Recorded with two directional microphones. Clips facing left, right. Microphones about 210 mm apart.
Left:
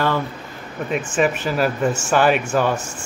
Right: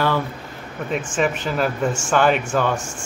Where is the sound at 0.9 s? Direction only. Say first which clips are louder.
Left 2 dB; 5° left (ahead or behind).